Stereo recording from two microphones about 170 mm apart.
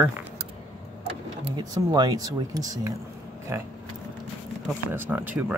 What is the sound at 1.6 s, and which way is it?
Speech, 25° right (ahead or behind).